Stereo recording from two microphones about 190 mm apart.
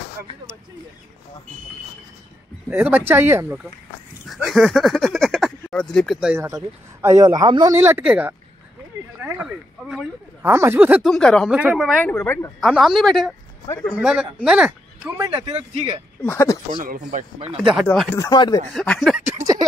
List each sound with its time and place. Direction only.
2.7 s speech: 10° right (ahead or behind)
4.5 s speech: centre (ahead or behind)
12.5 s speech: centre (ahead or behind)
15.0 s speech: 20° right (ahead or behind)
15.5 s speech: 35° right (ahead or behind)
16.2 s speech: 15° left (ahead or behind)
16.8 s speech: 45° right (ahead or behind)
17.5 s speech: 5° right (ahead or behind)
17.8 s speech: 10° left (ahead or behind)
18.3 s speech: 20° left (ahead or behind)
18.7 s speech: centre (ahead or behind)
19.2 s a sound: 15° right (ahead or behind)